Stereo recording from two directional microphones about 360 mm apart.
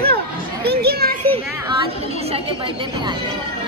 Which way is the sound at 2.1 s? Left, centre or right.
Centre.